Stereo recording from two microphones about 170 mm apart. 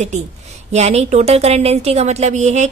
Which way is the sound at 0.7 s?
40° right (ahead or behind).